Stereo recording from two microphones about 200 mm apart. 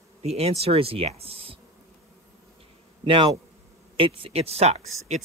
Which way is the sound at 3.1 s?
25° right (ahead or behind).